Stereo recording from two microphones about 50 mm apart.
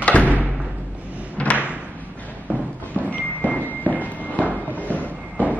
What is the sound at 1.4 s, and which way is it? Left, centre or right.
Slam, left.